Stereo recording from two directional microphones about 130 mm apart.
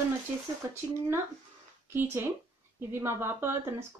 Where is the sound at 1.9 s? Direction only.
20° right (ahead or behind).